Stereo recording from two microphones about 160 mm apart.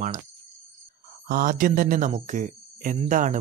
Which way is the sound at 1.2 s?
60° right (ahead or behind).